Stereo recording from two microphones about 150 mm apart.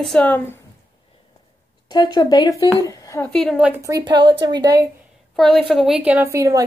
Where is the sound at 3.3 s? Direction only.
Centre (ahead or behind).